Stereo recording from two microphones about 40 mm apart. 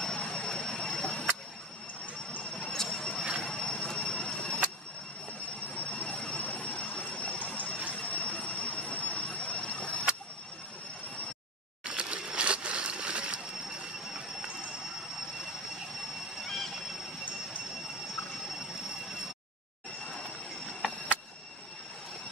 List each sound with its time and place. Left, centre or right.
0.0 s vehicle: left
2.5 s a sound: centre
5.8 s jet engine: left
7.1 s vehicle: left
11.8 s a sound: right
16.4 s vehicle: centre